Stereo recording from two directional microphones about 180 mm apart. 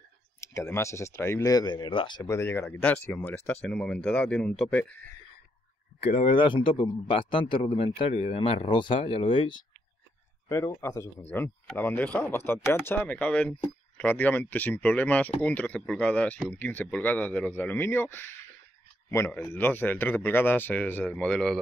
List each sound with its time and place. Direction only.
0.4 s a man's voice: 15° left (ahead or behind)
6.0 s a man's voice: 35° left (ahead or behind)
10.5 s a man's voice: 15° left (ahead or behind)